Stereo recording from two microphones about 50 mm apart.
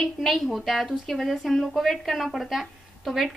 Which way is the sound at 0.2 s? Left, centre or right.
Centre.